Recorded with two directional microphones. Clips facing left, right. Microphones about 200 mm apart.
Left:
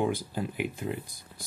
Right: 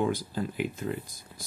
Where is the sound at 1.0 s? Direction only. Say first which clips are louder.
Right 1 dB; 55° left (ahead or behind).